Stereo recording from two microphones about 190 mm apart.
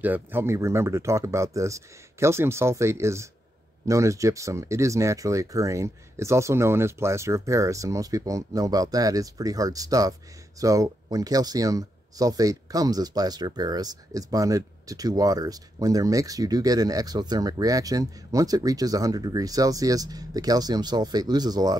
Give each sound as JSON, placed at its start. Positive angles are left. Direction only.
{"t": 0.0, "sound": "speech", "side_deg": -10}